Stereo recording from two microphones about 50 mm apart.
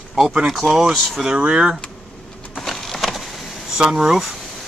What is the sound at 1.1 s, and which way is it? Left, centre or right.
Speech, centre.